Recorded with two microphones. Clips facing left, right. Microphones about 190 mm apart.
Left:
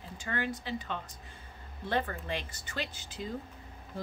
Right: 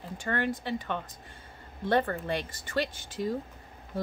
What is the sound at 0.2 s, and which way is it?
A woman's voice, 60° right (ahead or behind).